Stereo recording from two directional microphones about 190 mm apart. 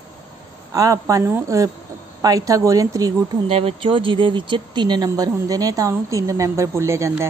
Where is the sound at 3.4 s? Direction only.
30° right (ahead or behind).